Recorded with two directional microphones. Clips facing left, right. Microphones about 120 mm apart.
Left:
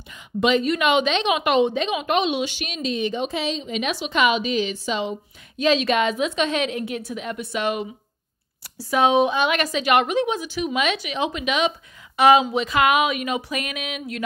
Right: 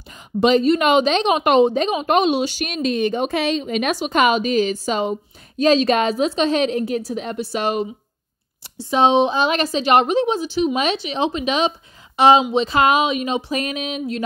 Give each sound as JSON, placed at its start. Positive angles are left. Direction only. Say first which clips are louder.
{"t": 0.4, "sound": "a woman's voice", "louder": "right 5 dB", "side_deg": -35}